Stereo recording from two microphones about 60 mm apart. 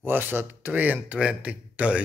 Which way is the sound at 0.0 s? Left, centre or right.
Right.